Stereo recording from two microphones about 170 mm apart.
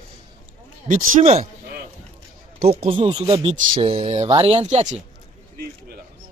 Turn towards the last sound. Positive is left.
turn(degrees=-40)  # may be behind; listen again after turning